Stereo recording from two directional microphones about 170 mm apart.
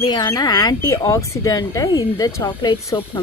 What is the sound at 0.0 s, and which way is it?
A woman's voice, 25° left (ahead or behind).